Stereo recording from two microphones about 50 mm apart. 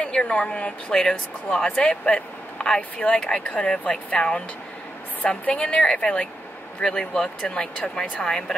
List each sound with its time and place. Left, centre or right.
0.0 s a woman's voice: centre
5.5 s a woman's voice: left